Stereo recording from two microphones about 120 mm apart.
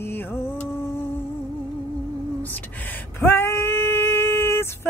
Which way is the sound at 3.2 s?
20° left (ahead or behind).